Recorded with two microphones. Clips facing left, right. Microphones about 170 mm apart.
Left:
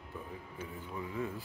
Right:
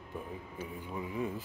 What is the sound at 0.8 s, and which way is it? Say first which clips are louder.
Speech: right 2 dB; 15° right (ahead or behind).